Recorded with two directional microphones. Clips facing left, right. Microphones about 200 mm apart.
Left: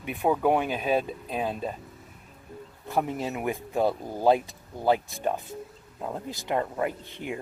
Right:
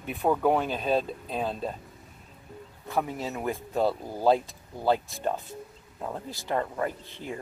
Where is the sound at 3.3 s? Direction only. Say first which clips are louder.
Right 1 dB; 15° left (ahead or behind).